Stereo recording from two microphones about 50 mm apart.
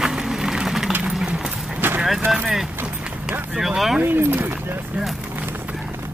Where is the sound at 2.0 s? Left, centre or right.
Centre.